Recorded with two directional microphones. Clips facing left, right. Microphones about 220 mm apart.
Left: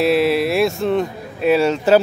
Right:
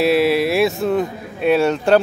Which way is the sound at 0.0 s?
Centre (ahead or behind).